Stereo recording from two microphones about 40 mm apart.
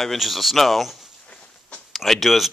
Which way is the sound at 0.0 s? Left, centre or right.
Centre.